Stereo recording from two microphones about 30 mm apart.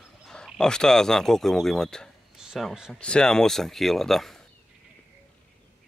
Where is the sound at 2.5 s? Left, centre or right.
Centre.